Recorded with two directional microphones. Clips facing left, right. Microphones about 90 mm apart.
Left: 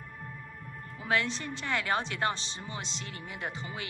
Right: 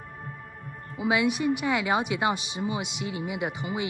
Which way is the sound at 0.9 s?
10° right (ahead or behind).